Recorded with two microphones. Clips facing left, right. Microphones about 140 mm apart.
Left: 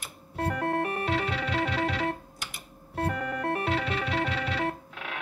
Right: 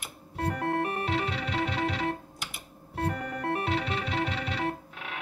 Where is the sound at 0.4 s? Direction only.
55° left (ahead or behind).